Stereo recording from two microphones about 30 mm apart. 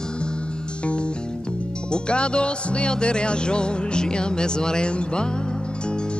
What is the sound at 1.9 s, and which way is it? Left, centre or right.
Music, left.